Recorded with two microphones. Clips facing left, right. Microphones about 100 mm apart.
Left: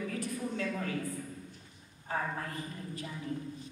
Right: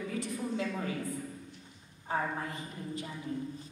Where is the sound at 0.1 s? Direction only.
20° right (ahead or behind).